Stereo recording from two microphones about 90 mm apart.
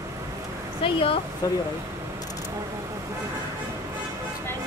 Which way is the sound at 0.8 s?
90° left.